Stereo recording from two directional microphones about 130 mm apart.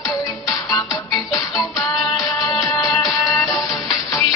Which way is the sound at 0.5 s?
30° left (ahead or behind).